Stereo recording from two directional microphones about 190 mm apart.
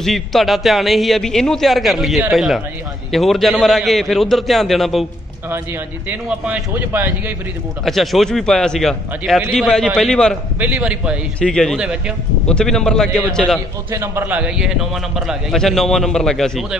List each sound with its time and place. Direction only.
0.0 s a man's voice: centre (ahead or behind)
6.0 s a man's voice: 5° right (ahead or behind)
7.8 s a man's voice: centre (ahead or behind)
10.6 s a man's voice: 5° right (ahead or behind)
11.3 s a man's voice: 5° left (ahead or behind)
13.9 s a man's voice: 15° right (ahead or behind); by 16.6 s centre (ahead or behind)